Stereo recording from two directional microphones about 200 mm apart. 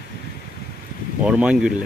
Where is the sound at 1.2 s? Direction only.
5° right (ahead or behind).